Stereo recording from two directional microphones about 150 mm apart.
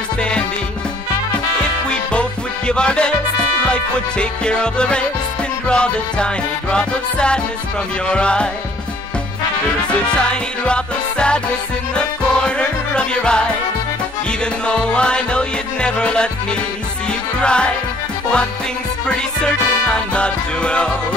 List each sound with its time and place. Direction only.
0.2 s music: 5° left (ahead or behind)
1.6 s music: 5° left (ahead or behind)
9.9 s music: 5° left (ahead or behind)
17.4 s music: 5° left (ahead or behind)
19.0 s music: 5° left (ahead or behind)